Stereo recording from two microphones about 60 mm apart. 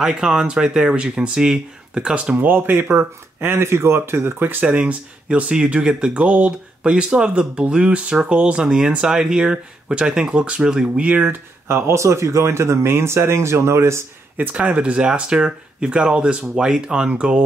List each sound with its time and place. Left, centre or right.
0.0 s speech: centre
2.3 s speech: right
4.6 s speech: centre
11.2 s speech: right
14.3 s speech: right